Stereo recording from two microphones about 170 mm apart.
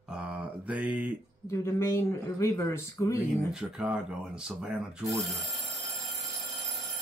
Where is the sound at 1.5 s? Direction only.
15° left (ahead or behind).